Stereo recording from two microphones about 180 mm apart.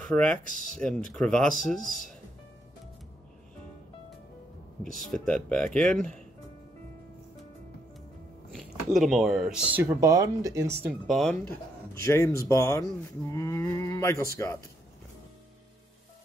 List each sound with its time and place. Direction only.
0.0 s speech: 5° left (ahead or behind)
4.9 s speech: 5° left (ahead or behind)
8.5 s speech: centre (ahead or behind); by 10.7 s 15° right (ahead or behind)
10.9 s speech: centre (ahead or behind)
11.9 s speech: 15° left (ahead or behind)